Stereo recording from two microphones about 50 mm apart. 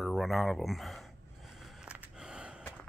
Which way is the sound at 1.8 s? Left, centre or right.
Centre.